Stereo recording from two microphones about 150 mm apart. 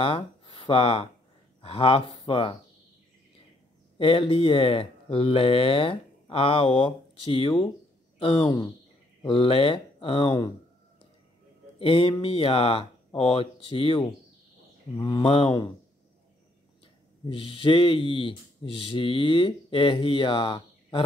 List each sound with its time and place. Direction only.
0.0 s speech: 40° left (ahead or behind)
4.0 s speech: 40° left (ahead or behind)
11.8 s speech: 40° left (ahead or behind)
16.8 s speech: 35° left (ahead or behind)